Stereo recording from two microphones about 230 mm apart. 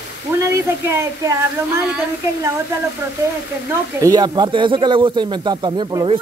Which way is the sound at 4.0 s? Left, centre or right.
Centre.